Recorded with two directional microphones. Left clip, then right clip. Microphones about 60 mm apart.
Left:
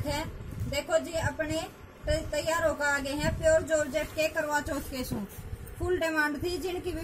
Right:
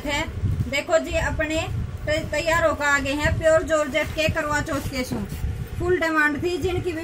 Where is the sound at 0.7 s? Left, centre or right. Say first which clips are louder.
Right 7 dB; centre.